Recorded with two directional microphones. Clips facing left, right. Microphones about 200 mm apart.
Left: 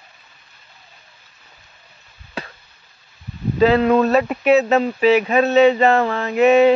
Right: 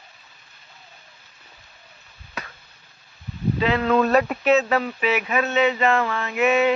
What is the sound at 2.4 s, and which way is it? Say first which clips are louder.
Chop: left 5 dB; 30° left (ahead or behind).